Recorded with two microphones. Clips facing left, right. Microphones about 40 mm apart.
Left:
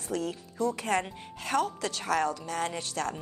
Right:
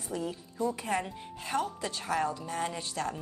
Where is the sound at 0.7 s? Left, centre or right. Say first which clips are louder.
Left 3 dB; left.